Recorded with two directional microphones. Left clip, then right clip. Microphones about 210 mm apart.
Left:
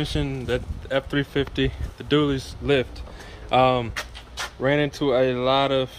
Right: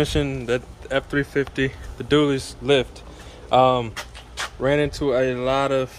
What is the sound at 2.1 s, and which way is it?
Speech, 5° right (ahead or behind).